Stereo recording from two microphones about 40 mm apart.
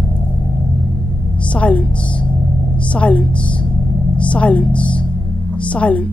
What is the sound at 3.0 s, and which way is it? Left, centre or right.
A woman's voice, left.